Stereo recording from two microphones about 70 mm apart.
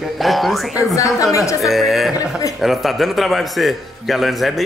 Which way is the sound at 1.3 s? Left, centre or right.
Left.